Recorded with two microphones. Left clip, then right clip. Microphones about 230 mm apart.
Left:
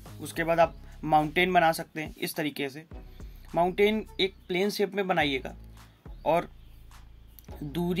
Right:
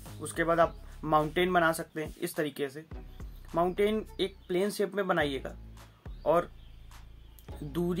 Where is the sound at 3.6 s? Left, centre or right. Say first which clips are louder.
Left 4 dB; left.